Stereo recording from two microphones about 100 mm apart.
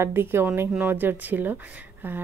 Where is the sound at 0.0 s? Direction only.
25° right (ahead or behind).